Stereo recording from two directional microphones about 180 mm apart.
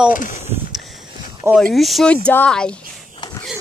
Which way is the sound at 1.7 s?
Centre (ahead or behind).